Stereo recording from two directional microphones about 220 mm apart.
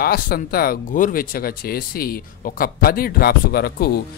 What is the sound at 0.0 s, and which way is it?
Speech, 45° left (ahead or behind).